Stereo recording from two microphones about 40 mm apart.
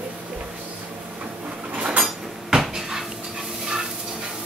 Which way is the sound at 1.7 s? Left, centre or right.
Right.